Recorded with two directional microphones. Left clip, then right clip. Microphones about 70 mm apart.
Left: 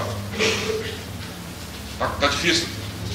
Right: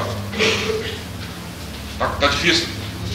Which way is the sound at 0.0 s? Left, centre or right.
Right.